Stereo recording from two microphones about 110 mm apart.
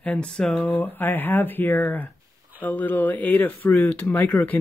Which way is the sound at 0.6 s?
15° left (ahead or behind).